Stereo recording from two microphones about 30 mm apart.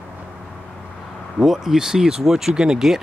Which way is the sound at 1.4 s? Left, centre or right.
Centre.